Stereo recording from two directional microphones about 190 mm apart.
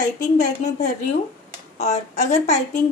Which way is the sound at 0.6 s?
40° left (ahead or behind).